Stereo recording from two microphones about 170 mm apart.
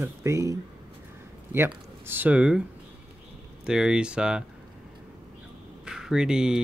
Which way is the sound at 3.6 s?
5° right (ahead or behind).